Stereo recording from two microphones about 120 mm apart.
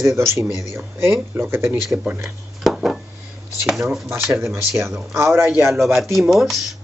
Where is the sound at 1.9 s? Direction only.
10° right (ahead or behind).